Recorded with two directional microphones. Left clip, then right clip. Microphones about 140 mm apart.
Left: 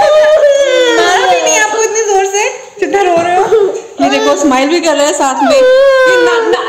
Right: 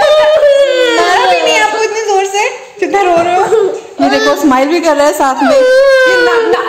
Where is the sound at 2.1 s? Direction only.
15° right (ahead or behind).